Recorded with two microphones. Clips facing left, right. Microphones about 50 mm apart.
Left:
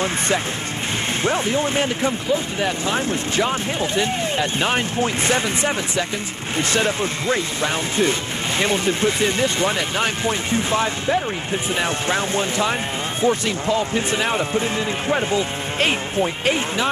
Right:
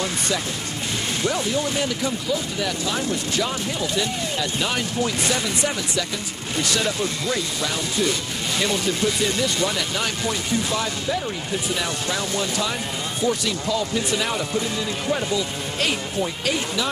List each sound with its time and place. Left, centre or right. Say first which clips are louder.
1.2 s speech: left 3 dB; left